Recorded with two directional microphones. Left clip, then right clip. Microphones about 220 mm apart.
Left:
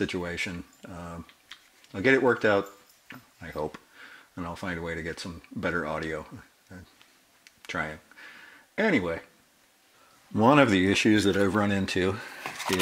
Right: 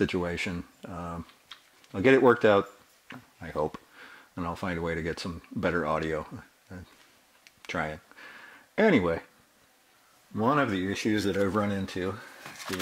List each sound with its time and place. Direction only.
0.0 s speech: 25° right (ahead or behind)
7.4 s a sound: 20° right (ahead or behind)
8.7 s speech: 25° right (ahead or behind)
10.3 s speech: centre (ahead or behind)